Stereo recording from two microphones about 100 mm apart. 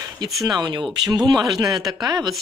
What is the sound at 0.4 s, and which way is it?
Speech, 45° right (ahead or behind).